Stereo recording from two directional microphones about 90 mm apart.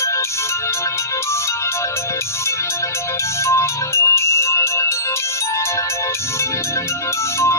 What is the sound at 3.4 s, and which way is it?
Music, 30° left (ahead or behind).